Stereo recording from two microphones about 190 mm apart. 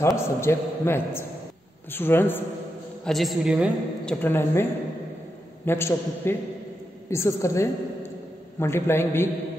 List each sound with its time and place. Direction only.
0.0 s a man's voice: 15° left (ahead or behind)
3.1 s a woman's voice: centre (ahead or behind)
5.7 s a man's voice: 15° left (ahead or behind)